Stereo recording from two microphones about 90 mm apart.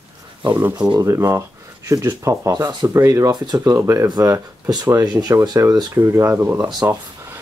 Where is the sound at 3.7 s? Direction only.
30° right (ahead or behind).